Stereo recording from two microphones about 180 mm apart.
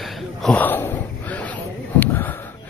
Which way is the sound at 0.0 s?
5° left (ahead or behind).